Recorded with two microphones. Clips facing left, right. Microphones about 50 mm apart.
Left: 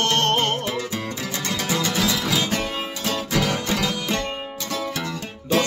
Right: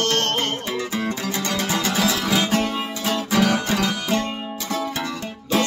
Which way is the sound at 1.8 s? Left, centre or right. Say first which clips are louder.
Right 1 dB; centre.